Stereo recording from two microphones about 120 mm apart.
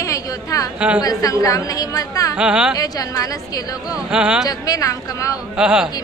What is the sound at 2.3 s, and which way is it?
Speech, 5° right (ahead or behind).